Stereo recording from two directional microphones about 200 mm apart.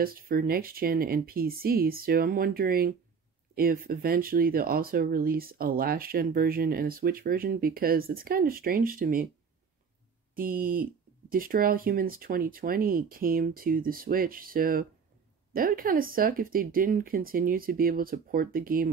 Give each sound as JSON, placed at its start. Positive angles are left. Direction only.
{"t": 0.0, "sound": "speech", "side_deg": -45}
{"t": 10.3, "sound": "speech", "side_deg": -45}